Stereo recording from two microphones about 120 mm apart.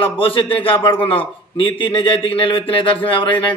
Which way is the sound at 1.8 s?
45° left (ahead or behind).